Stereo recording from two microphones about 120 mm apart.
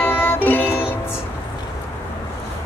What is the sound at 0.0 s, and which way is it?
Music, 15° left (ahead or behind).